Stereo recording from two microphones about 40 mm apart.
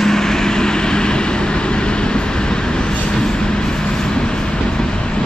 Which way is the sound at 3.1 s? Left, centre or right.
Centre.